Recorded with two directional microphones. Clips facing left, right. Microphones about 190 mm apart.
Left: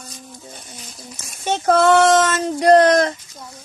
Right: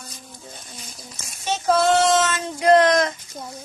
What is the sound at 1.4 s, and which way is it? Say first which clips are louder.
Female singing: left 4 dB; 55° left (ahead or behind).